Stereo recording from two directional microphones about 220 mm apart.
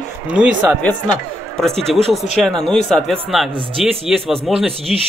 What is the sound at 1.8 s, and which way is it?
Speech, 30° right (ahead or behind).